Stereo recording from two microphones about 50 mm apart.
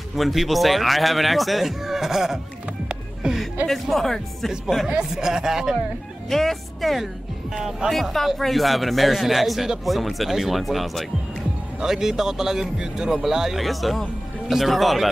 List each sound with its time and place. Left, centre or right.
0.1 s speech: centre
3.2 s music: centre
3.6 s speech: centre
4.8 s speech: centre
6.2 s speech: centre
7.9 s speech: centre